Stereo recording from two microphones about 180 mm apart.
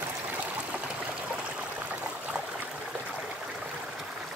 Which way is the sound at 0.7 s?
5° right (ahead or behind).